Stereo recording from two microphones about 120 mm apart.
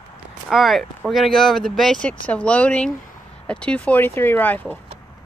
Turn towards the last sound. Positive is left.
turn(degrees=15)  # may be behind; listen again after turning